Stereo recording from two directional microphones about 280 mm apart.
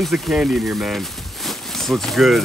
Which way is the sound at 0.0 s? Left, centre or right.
Centre.